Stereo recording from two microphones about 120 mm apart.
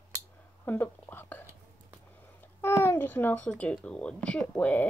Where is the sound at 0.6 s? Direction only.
20° left (ahead or behind).